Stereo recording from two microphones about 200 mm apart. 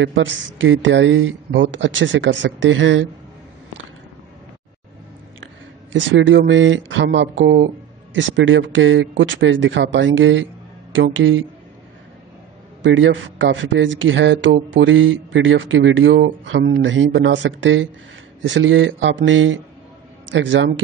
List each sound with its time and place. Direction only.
0.0 s a man's voice: 70° right (ahead or behind)
5.9 s a man's voice: 65° right (ahead or behind)
12.8 s a man's voice: 70° right (ahead or behind)